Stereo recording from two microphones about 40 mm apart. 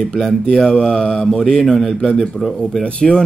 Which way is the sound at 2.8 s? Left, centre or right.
Left.